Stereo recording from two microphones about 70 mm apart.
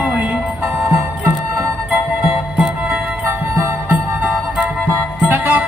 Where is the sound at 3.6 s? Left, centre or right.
Right.